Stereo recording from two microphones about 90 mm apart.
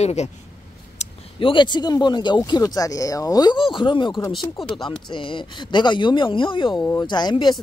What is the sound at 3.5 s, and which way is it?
Speech, 65° left (ahead or behind).